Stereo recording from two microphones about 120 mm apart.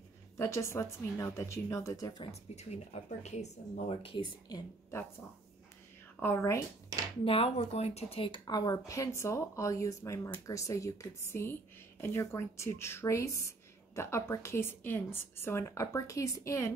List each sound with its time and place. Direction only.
0.4 s speech: 25° left (ahead or behind)
2.5 s speech: 65° left (ahead or behind)
4.0 s speech: 45° left (ahead or behind)
6.1 s speech: 20° left (ahead or behind)
7.2 s speech: 50° left (ahead or behind); by 16.7 s 25° left (ahead or behind)